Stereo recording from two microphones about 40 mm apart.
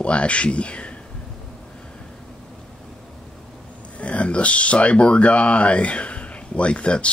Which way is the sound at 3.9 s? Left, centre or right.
Left.